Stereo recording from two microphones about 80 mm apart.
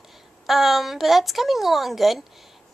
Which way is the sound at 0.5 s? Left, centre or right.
Centre.